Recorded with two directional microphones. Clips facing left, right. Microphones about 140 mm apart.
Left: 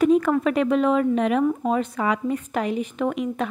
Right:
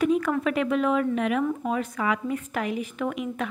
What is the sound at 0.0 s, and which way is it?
Speech, 35° left (ahead or behind).